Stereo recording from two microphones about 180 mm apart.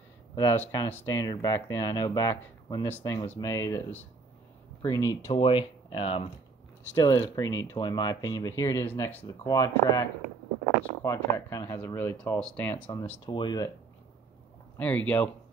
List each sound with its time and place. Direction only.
0.4 s speech: 20° left (ahead or behind)
5.3 s speech: 30° left (ahead or behind); by 13.2 s 10° left (ahead or behind)
13.2 s speech: 25° left (ahead or behind)
14.8 s speech: 10° left (ahead or behind)